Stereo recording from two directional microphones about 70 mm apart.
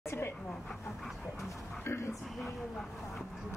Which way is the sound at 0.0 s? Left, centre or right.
Left.